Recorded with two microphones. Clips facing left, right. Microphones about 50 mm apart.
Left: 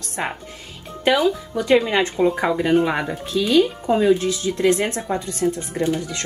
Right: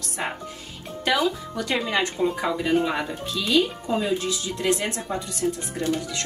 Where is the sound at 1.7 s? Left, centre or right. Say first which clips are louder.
Left 8 dB; left.